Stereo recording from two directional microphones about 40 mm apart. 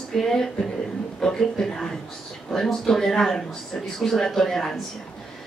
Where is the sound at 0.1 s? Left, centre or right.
Centre.